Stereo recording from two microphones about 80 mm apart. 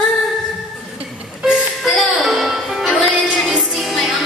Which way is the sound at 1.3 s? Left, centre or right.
Centre.